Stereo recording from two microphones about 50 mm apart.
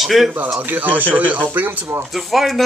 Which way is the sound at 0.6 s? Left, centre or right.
Right.